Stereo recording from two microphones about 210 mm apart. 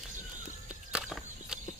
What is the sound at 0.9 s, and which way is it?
Walk, 5° right (ahead or behind).